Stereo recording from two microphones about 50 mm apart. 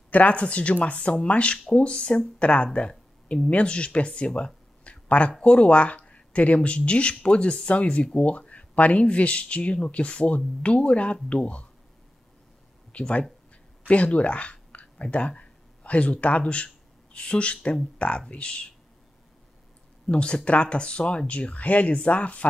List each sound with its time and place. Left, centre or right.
0.1 s speech: left
4.8 s a sound: left
5.4 s speech: left
12.9 s speech: centre
20.1 s speech: centre